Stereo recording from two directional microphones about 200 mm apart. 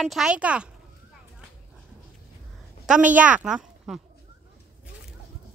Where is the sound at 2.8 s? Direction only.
5° right (ahead or behind).